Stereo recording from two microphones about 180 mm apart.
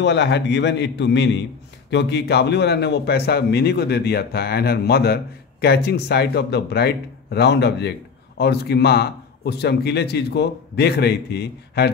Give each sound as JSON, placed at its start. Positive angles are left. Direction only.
{"t": 0.0, "sound": "a man's voice", "side_deg": 75}